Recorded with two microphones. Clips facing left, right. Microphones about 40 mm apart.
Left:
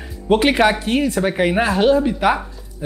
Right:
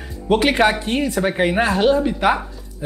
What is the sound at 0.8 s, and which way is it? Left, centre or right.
Speech, centre.